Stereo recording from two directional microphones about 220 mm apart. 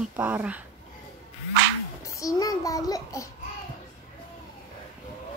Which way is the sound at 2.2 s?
15° left (ahead or behind).